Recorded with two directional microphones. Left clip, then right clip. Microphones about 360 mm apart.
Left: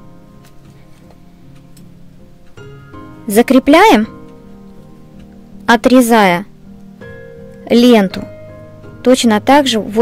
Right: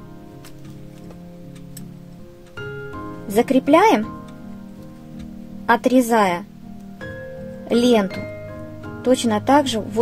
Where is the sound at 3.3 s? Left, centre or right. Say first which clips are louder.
Left 7 dB; left.